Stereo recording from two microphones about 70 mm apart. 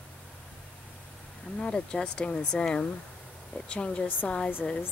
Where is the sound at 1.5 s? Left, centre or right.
Centre.